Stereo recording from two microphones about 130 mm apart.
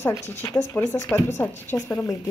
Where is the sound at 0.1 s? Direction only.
15° left (ahead or behind).